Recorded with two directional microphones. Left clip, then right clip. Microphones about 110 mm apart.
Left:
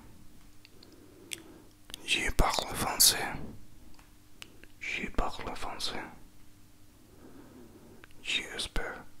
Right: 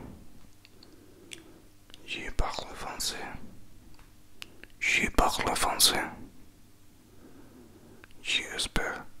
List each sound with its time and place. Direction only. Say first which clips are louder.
1.3 s chewing: left 4 dB; 15° left (ahead or behind)
1.9 s whispering: left 7 dB; 25° left (ahead or behind)
4.4 s a sound: right 4 dB; 10° right (ahead or behind)
4.7 s whispering: right 9 dB; 25° right (ahead or behind)
8.0 s whispering: right 3 dB; centre (ahead or behind)